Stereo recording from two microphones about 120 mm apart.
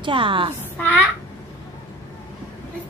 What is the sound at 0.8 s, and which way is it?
Speech, 15° left (ahead or behind).